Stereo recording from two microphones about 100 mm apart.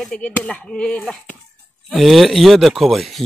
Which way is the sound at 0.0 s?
10° left (ahead or behind).